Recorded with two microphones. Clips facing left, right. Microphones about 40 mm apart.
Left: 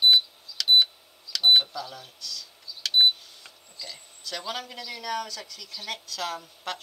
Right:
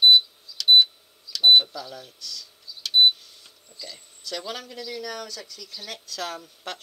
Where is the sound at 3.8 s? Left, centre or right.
Centre.